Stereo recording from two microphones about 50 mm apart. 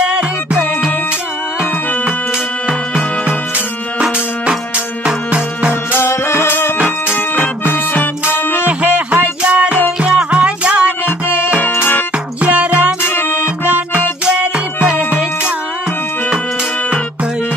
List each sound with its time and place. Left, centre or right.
0.0 s music: centre
4.0 s music: centre
5.9 s music: left
7.7 s music: left
8.6 s music: right
11.6 s music: left
12.4 s music: right
13.0 s music: left
13.7 s music: right
14.2 s music: right